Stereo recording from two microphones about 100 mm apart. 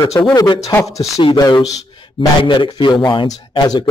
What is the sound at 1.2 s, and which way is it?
Speech, 55° left (ahead or behind).